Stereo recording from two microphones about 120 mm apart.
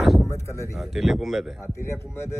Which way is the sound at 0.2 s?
25° left (ahead or behind).